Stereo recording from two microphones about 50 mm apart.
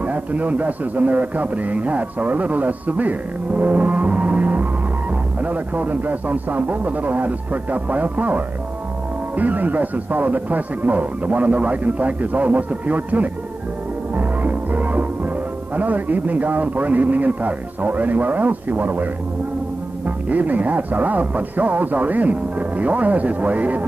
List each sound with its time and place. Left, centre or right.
0.0 s a man's voice: right
20.1 s speech: right